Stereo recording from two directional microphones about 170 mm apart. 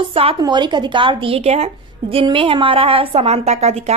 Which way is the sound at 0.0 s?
35° right (ahead or behind).